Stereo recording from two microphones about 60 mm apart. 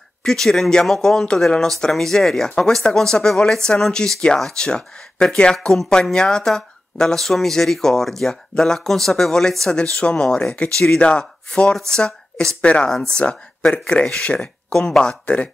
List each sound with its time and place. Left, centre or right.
0.2 s speech: centre